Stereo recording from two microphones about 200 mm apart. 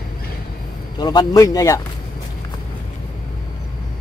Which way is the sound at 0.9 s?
20° left (ahead or behind).